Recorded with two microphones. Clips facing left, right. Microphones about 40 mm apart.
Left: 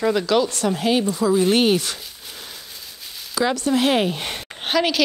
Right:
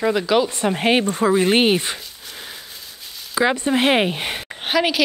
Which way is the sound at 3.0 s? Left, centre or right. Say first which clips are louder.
Left 1 dB; centre.